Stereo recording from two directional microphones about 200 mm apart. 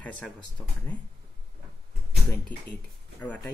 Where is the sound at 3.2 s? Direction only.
5° left (ahead or behind).